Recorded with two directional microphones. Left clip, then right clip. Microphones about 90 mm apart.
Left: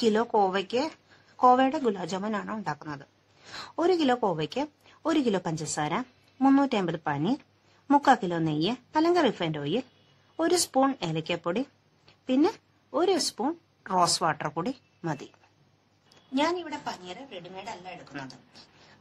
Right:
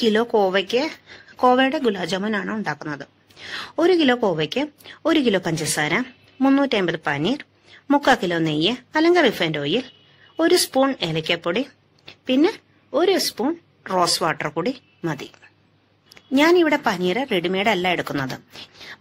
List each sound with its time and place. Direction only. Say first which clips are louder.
0.0 s a woman's voice: right 6 dB; 20° right (ahead or behind)
3.5 s a woman's voice: right 7 dB; 15° right (ahead or behind)
6.4 s speech: right 4 dB; 10° right (ahead or behind)
6.7 s a woman's voice: right 7 dB; 25° right (ahead or behind)
18.1 s speech: right 13 dB; centre (ahead or behind)